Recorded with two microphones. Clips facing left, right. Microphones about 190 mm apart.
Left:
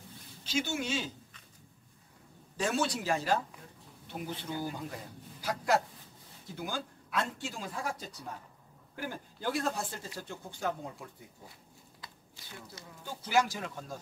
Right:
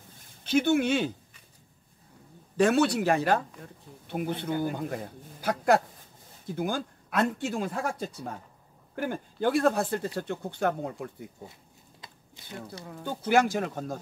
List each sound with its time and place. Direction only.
0.4 s speech: 55° right (ahead or behind)
2.5 s a man's voice: 60° right (ahead or behind)
12.8 s speech: 60° right (ahead or behind)